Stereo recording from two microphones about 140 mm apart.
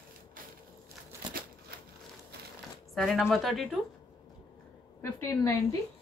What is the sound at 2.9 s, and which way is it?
Speech, centre (ahead or behind).